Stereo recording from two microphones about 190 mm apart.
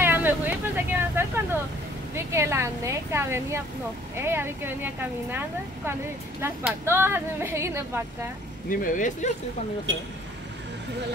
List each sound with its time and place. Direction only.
0.0 s speech: 10° right (ahead or behind)
6.4 s speech: 10° right (ahead or behind)
8.6 s speech: 45° left (ahead or behind)